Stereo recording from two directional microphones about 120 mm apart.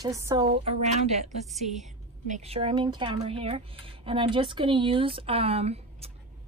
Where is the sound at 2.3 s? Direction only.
60° right (ahead or behind).